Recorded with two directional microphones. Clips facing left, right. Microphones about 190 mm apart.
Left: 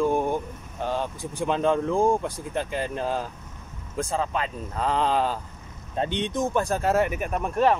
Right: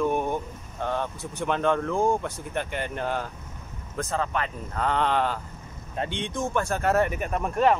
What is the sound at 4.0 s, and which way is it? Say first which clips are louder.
Speech: left 1 dB; 15° left (ahead or behind).